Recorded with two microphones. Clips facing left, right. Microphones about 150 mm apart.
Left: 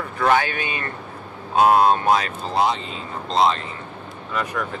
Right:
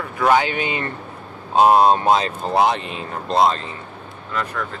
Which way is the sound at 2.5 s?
65° right (ahead or behind).